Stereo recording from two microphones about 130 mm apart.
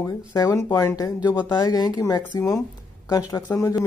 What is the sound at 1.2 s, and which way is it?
Speech, 35° left (ahead or behind).